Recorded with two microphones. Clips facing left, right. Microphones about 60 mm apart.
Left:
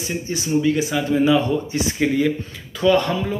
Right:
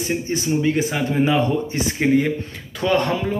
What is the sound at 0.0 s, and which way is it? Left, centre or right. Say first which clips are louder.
Speech: right 3 dB; right.